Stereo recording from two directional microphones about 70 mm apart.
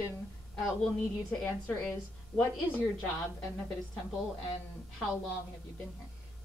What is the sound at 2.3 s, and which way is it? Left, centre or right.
Speech, centre.